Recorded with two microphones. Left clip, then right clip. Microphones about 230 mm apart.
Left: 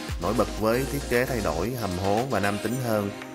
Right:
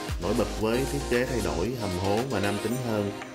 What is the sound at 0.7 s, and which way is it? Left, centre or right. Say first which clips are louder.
Speech: left 2 dB; centre.